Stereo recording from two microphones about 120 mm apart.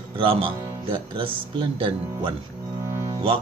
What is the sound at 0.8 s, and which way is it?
Speech, 45° right (ahead or behind).